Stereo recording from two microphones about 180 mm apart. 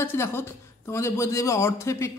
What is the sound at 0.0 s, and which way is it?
A man's voice, 15° left (ahead or behind).